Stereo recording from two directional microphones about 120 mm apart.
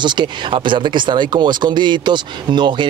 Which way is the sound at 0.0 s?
40° right (ahead or behind).